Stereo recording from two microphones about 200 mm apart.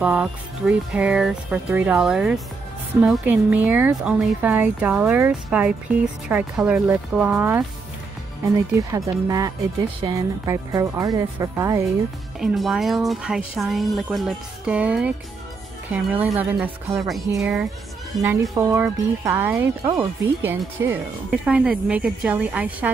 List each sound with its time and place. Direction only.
0.0 s speech: 5° right (ahead or behind)
8.7 s speech: 15° right (ahead or behind)
12.4 s speech: centre (ahead or behind)
18.2 s speech: 15° right (ahead or behind)